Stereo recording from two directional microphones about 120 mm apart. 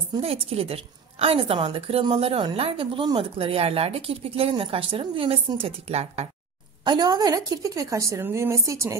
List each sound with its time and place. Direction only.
0.2 s speech: 55° right (ahead or behind)
6.8 s a woman's voice: 35° right (ahead or behind)